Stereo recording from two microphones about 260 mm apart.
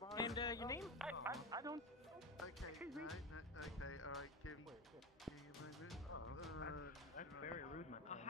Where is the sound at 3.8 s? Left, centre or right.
Left.